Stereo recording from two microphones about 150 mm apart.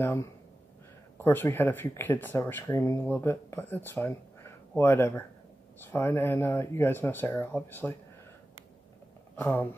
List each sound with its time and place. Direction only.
0.0 s speech: 20° left (ahead or behind)
9.4 s speech: 15° left (ahead or behind)